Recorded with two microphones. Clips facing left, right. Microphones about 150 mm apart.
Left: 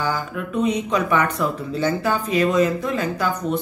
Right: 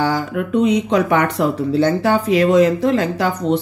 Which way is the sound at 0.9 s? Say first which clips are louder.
Right 4 dB; 75° right (ahead or behind).